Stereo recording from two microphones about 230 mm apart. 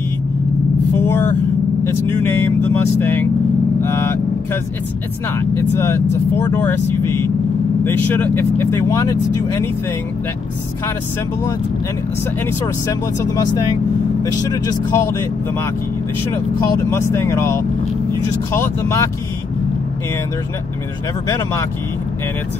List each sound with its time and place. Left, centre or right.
0.9 s vehicle: centre
2.1 s speech: centre
5.4 s speech: centre
12.8 s speech: centre
16.9 s speech: centre
18.6 s speech: centre